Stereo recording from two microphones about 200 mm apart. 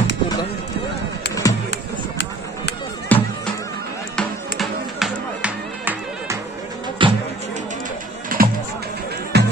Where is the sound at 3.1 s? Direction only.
10° left (ahead or behind); by 6.3 s 10° right (ahead or behind).